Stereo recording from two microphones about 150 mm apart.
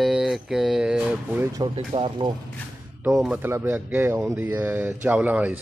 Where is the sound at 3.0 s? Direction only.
5° right (ahead or behind).